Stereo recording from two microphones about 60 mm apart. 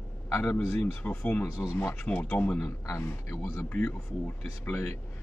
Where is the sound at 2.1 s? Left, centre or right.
Left.